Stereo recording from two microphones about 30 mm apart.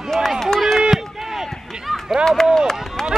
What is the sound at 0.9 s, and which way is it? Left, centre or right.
Run, centre.